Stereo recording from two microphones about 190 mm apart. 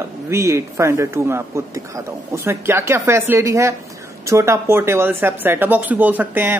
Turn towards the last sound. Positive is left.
turn(degrees=-10)  # may be behind; listen again after turning